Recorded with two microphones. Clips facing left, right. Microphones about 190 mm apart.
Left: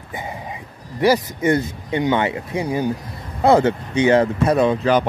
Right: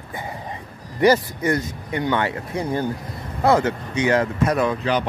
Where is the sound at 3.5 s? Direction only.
30° left (ahead or behind).